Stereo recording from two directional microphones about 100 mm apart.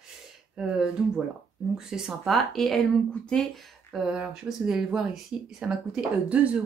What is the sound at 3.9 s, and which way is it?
Speech, 5° right (ahead or behind).